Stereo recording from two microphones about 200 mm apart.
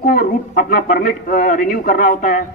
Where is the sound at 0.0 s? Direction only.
45° left (ahead or behind).